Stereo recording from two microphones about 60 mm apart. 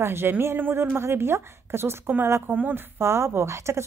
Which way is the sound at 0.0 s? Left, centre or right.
Right.